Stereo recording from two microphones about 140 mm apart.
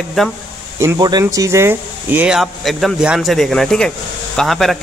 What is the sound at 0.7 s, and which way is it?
Speech, 25° right (ahead or behind).